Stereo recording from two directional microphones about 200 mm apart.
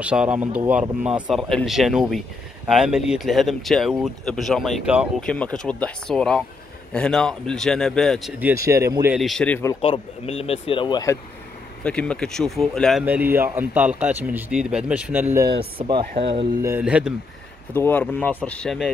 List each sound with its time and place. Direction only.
0.0 s speech: 5° right (ahead or behind)
9.1 s speech: centre (ahead or behind)
9.8 s speech: 30° left (ahead or behind)
11.8 s speech: 5° left (ahead or behind)
13.0 s speech: 10° right (ahead or behind)
15.8 s speech: 25° right (ahead or behind)
16.6 s speech: 10° right (ahead or behind)
17.7 s speech: 10° left (ahead or behind)